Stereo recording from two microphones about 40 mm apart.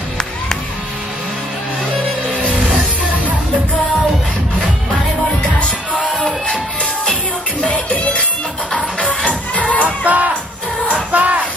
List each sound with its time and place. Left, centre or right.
7.6 s music: left
9.8 s music: right